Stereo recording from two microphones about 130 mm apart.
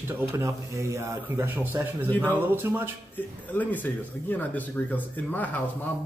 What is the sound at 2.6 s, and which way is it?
Speech, 15° right (ahead or behind).